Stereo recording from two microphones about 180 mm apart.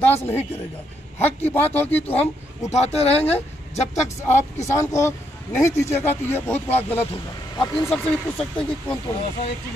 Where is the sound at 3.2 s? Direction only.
35° left (ahead or behind).